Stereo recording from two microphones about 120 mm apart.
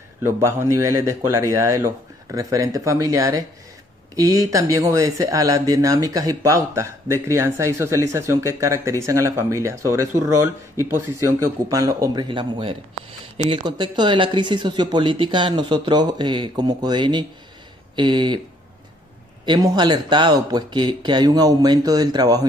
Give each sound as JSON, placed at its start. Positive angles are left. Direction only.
{"t": 0.2, "sound": "speech", "side_deg": -20}
{"t": 19.4, "sound": "speech", "side_deg": -35}